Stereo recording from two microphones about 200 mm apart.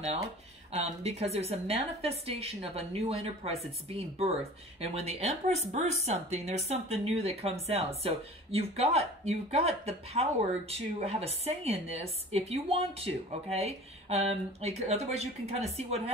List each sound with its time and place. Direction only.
0.7 s a woman's voice: 30° right (ahead or behind)
4.7 s a woman's voice: 30° right (ahead or behind)